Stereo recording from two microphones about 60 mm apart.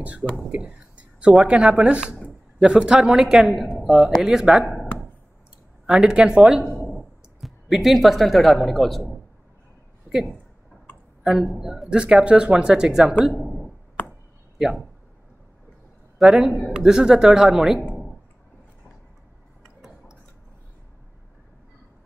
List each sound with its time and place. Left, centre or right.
0.0 s speech: right
0.5 s a sound: centre
1.3 s speech: centre
5.9 s speech: centre
6.9 s speech: centre
10.0 s a sound: centre
11.2 s speech: centre
14.6 s a man's voice: centre
16.2 s a man's voice: centre